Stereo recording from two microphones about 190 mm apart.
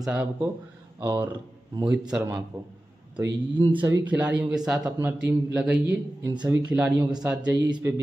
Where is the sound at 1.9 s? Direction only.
5° right (ahead or behind).